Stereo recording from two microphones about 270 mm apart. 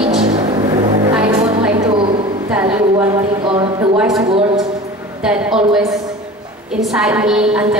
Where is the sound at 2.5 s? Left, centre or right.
Centre.